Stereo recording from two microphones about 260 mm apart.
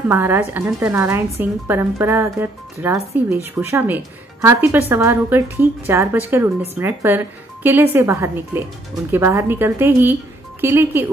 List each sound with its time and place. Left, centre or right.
0.1 s speech: centre